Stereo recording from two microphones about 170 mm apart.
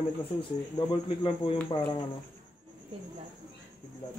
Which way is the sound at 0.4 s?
30° left (ahead or behind).